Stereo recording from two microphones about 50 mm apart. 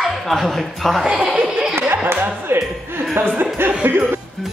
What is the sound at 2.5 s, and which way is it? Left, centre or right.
Speech, right.